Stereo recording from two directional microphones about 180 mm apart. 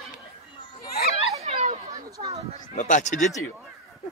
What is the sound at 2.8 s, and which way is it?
Speech, 45° left (ahead or behind).